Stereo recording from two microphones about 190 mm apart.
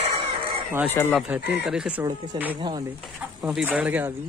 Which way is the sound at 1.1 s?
5° right (ahead or behind).